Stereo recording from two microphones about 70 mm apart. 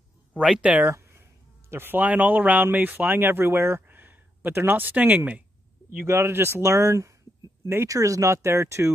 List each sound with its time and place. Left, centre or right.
0.6 s speech: centre
0.8 s a sound: right
1.7 s speech: right
3.8 s speech: right
5.9 s speech: right